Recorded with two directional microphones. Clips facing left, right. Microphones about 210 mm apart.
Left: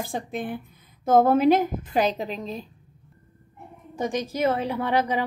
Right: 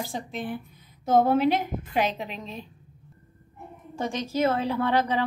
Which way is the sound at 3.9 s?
15° left (ahead or behind).